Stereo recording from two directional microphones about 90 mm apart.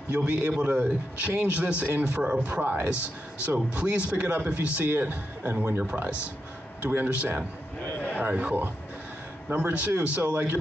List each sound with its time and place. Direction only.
0.1 s a man's voice: 15° right (ahead or behind)
7.8 s a sound: 15° left (ahead or behind)
8.2 s a man's voice: 15° right (ahead or behind)